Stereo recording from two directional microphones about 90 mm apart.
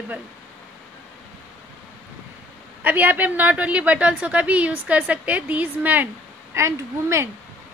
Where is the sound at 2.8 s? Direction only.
20° right (ahead or behind).